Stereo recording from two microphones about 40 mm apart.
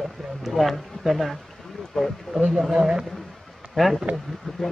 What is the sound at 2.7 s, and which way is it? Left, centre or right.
Speech, centre.